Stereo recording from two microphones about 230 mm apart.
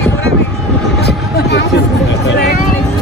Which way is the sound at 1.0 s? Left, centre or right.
Left.